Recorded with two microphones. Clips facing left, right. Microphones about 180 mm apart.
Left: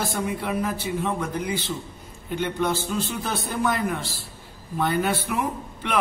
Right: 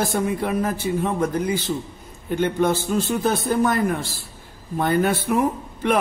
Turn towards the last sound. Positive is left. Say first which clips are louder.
# right 7 dB
turn(degrees=-45)  # may be behind; listen again after turning